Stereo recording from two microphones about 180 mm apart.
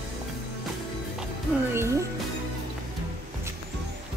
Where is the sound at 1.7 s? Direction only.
15° right (ahead or behind).